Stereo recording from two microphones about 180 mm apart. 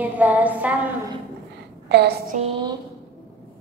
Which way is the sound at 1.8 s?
65° right (ahead or behind).